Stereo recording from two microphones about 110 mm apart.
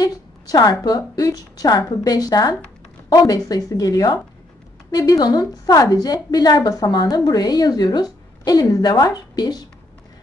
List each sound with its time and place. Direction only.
0.0 s a woman's voice: 35° left (ahead or behind)